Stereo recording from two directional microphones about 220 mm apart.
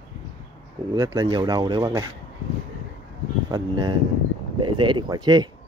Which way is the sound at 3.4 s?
20° right (ahead or behind).